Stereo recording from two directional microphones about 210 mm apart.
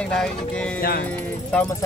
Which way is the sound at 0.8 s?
45° left (ahead or behind).